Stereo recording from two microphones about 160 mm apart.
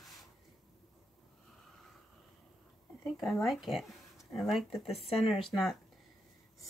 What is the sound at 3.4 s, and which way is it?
Speech, centre (ahead or behind).